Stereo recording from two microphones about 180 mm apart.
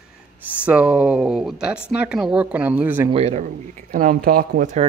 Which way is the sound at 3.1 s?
35° right (ahead or behind).